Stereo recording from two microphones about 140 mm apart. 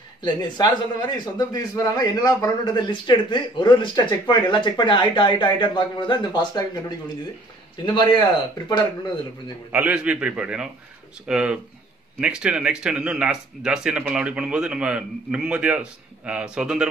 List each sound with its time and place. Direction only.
0.2 s a man's voice: 30° left (ahead or behind)
7.8 s a man's voice: 35° left (ahead or behind)
9.7 s speech: 10° right (ahead or behind)